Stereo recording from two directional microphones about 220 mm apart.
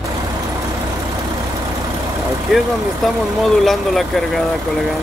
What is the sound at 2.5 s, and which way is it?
Speech, centre (ahead or behind).